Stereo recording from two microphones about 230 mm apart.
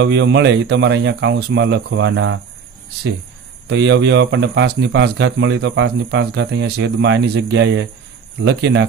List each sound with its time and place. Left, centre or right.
0.0 s speech: right
3.6 s speech: right